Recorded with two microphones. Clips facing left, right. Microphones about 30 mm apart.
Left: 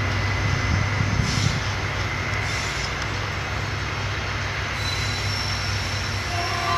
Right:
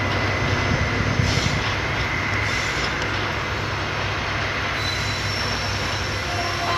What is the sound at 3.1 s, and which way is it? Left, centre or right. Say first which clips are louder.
Vehicle: right 4 dB; right.